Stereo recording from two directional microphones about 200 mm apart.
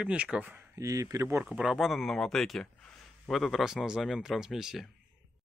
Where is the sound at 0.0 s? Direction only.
5° right (ahead or behind).